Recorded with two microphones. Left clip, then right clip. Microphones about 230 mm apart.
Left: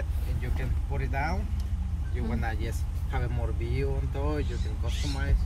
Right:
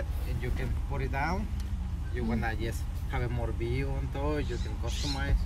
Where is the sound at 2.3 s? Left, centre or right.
Centre.